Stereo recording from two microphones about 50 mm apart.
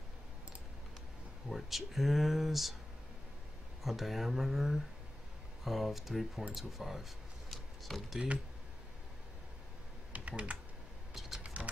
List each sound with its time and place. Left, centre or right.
1.5 s speech: centre
3.8 s speech: centre
7.5 s a sound: centre
10.1 s typing: right
11.1 s vehicle: centre
11.4 s a sound: right